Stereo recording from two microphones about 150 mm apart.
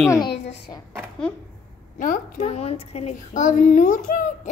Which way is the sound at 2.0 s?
65° left (ahead or behind).